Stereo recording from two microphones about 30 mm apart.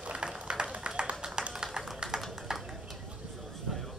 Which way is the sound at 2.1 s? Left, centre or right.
Right.